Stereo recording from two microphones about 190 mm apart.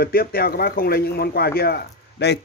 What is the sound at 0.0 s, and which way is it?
A man's voice, 50° left (ahead or behind).